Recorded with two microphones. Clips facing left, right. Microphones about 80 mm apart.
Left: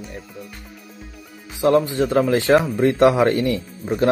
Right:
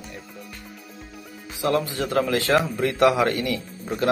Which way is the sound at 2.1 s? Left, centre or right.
Left.